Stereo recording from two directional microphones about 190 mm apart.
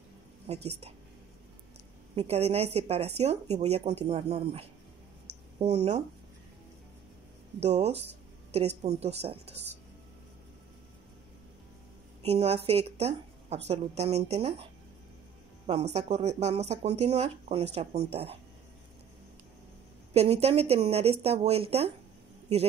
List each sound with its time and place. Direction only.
0.5 s speech: 35° right (ahead or behind)
2.1 s speech: 35° right (ahead or behind)
7.6 s speech: 35° right (ahead or behind)
12.2 s speech: 35° right (ahead or behind)
20.2 s speech: 35° right (ahead or behind)